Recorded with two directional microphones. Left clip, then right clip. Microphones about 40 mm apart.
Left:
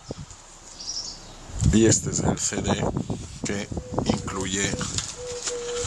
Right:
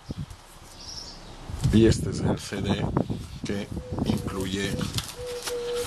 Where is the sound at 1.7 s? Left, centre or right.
Left.